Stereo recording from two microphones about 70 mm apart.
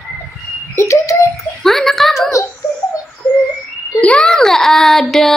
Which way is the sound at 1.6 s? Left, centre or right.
Centre.